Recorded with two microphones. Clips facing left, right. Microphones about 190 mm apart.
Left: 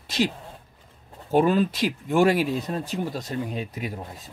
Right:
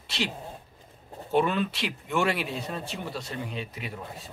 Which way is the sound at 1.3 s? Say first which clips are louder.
Left 5 dB; 40° left (ahead or behind).